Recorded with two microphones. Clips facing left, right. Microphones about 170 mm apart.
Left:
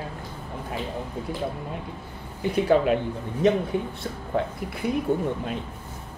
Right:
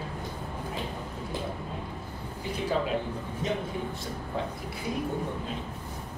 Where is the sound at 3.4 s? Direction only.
65° left (ahead or behind).